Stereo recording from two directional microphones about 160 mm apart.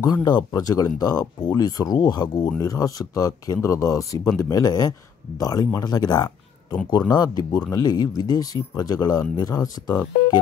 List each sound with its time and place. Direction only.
0.0 s speech: 25° left (ahead or behind)